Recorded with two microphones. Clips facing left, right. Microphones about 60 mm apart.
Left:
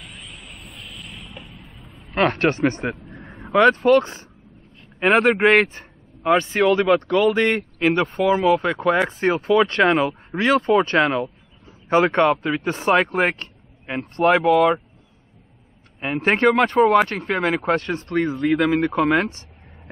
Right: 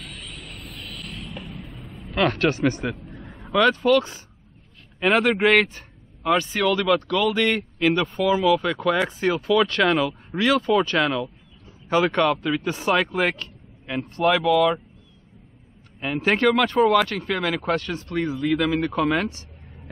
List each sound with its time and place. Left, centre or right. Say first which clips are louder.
0.0 s vehicle: right 1 dB; centre
0.6 s mechanisms: right 2 dB; centre
2.0 s vehicle: left 2 dB; left
3.5 s speech: left 4 dB; left
8.1 s speech: left 2 dB; left
16.2 s speech: left 2 dB; left